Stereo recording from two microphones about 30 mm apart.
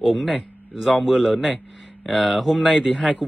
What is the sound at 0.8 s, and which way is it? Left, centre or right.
Speech, centre.